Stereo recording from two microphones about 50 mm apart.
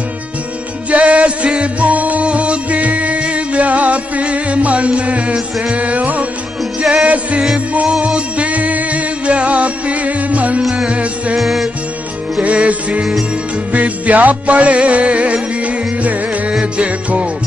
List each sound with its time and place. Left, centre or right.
0.8 s music: right
11.3 s music: centre
12.4 s music: right